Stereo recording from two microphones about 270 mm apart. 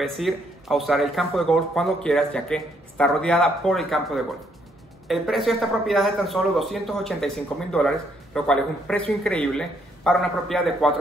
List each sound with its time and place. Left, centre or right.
0.0 s speech: centre